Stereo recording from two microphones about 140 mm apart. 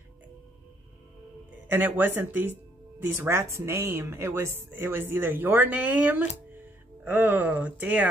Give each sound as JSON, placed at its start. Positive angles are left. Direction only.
{"t": 1.7, "sound": "speech", "side_deg": -15}